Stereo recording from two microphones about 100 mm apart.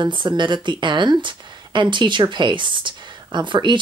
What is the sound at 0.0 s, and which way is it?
Speech, 50° right (ahead or behind).